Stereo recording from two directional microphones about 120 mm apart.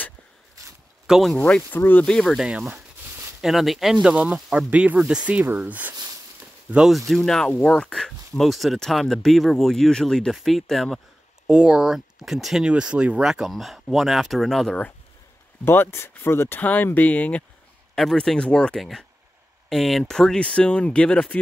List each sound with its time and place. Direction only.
0.6 s zipper: 25° right (ahead or behind)
1.0 s speech: centre (ahead or behind)
1.4 s speech: 15° left (ahead or behind)
2.0 s speech: 5° left (ahead or behind)
2.4 s a sound: 10° right (ahead or behind)
3.3 s speech: 5° right (ahead or behind)
15.6 s speech: 20° left (ahead or behind)
17.9 s speech: centre (ahead or behind)